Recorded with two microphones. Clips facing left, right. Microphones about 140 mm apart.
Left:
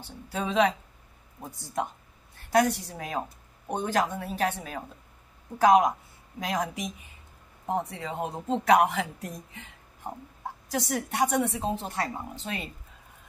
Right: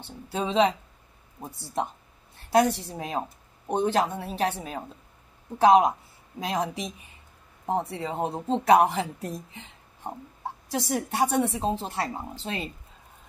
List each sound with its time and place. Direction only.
0.0 s speech: 25° right (ahead or behind)